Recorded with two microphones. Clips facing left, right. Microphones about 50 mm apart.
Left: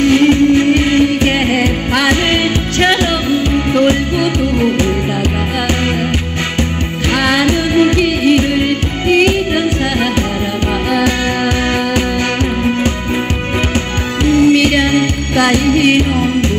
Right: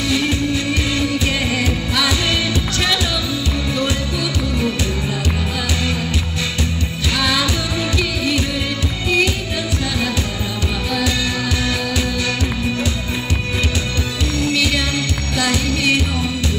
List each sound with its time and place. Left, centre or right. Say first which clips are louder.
0.0 s music: left 10 dB; left
7.2 s music: left 7 dB; left
10.9 s music: left 7 dB; left
14.2 s music: left 11 dB; left